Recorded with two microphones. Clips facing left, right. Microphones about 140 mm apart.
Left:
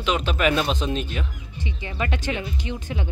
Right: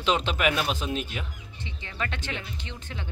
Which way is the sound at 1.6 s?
10° left (ahead or behind).